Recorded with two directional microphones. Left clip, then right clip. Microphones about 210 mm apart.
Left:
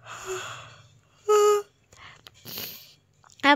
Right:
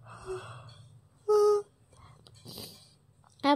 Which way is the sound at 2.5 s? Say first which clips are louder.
Left 7 dB; 5° left (ahead or behind).